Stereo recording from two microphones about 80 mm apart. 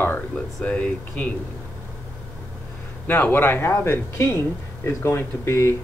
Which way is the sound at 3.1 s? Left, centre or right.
Left.